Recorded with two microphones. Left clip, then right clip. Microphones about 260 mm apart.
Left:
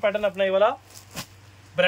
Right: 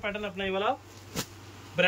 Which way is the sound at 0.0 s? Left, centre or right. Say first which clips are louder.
Left 10 dB; left.